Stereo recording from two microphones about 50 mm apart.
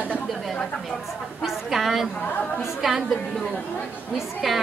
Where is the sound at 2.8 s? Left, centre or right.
Centre.